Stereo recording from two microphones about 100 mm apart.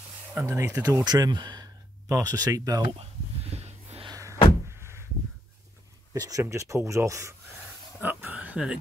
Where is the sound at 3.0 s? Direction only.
90° right.